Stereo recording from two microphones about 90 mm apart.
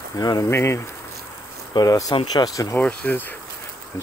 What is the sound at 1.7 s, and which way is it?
Speech, 45° left (ahead or behind).